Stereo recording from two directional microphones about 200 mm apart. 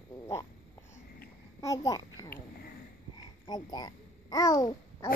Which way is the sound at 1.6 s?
15° left (ahead or behind).